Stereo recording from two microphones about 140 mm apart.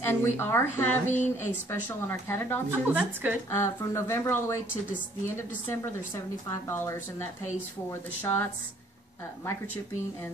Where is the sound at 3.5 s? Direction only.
20° left (ahead or behind).